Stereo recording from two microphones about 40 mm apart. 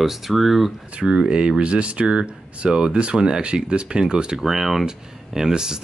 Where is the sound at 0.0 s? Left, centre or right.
Centre.